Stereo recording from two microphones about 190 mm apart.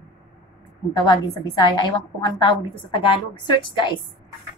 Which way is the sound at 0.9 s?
25° left (ahead or behind).